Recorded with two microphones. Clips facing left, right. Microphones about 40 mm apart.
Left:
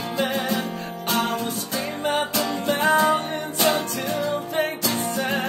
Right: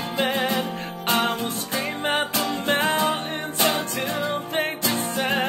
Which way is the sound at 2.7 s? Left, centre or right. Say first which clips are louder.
Left 3 dB; right.